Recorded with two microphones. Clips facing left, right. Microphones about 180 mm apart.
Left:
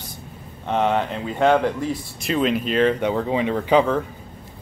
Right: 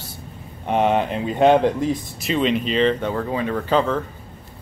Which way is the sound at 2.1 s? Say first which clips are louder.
Left 1 dB; centre (ahead or behind).